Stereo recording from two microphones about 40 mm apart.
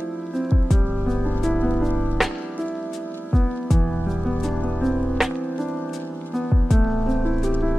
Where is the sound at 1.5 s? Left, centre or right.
Left.